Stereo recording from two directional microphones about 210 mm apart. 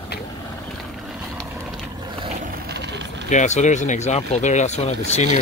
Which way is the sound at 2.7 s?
55° right (ahead or behind).